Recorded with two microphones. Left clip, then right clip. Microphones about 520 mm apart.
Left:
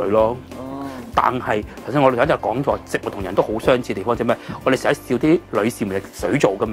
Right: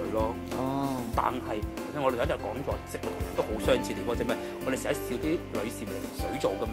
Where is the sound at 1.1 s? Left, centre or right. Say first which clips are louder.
Left 14 dB; left.